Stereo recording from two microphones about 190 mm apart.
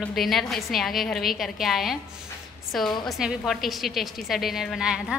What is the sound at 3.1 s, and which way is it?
A woman's voice, centre (ahead or behind).